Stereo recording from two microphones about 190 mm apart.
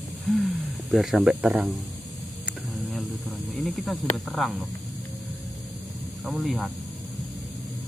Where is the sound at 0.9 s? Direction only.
Centre (ahead or behind).